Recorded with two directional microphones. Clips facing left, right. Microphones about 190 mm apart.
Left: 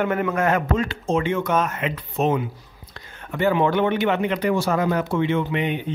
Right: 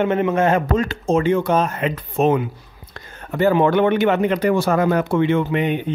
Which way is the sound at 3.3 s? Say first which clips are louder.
Right 4 dB; 40° right (ahead or behind).